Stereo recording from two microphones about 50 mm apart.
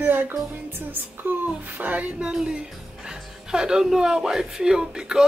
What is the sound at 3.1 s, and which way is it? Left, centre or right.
Speech, centre.